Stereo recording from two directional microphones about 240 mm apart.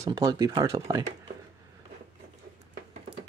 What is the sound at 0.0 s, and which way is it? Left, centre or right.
Speech, centre.